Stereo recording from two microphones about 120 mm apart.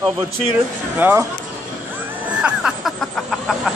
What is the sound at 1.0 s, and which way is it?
Speech, 15° right (ahead or behind).